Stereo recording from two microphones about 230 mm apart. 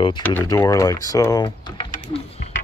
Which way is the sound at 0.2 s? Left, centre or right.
Centre.